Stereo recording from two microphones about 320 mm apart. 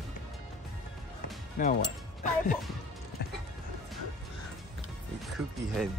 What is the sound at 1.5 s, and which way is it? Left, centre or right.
Speech, left.